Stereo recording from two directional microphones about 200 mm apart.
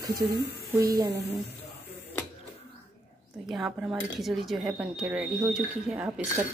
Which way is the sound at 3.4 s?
Centre (ahead or behind).